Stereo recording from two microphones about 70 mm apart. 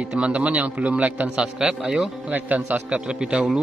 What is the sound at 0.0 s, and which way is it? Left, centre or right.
A man's voice, centre.